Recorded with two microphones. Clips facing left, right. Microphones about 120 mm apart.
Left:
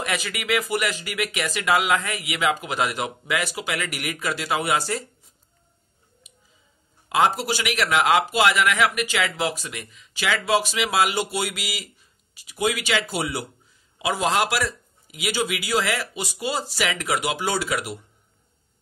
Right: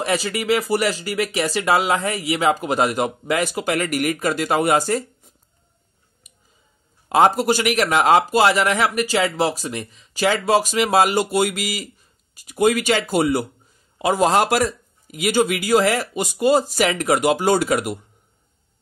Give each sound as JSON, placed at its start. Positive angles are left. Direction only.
{"t": 0.0, "sound": "speech", "side_deg": -35}
{"t": 7.1, "sound": "a man's voice", "side_deg": -45}